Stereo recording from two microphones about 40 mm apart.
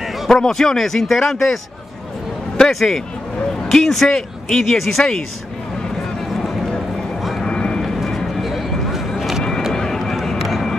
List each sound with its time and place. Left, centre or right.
0.3 s speech: centre
2.7 s speech: centre
7.4 s vehicle: left
7.8 s vehicle: centre
8.4 s a sound: centre
9.7 s a sound: centre